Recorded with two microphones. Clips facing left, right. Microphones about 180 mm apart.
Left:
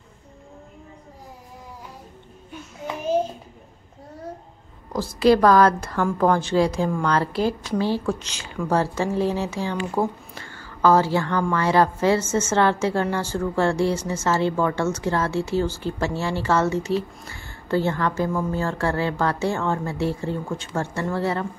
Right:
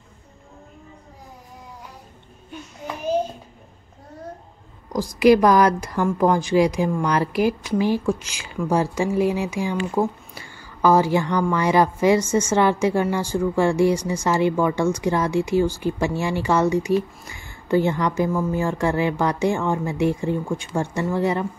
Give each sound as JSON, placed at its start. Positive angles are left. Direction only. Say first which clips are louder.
{"t": 4.9, "sound": "a woman's voice", "louder": "right 2 dB", "side_deg": -15}
{"t": 10.3, "sound": "whispering", "louder": "left 1 dB", "side_deg": -15}
{"t": 11.5, "sound": "a woman's voice", "louder": "even", "side_deg": -15}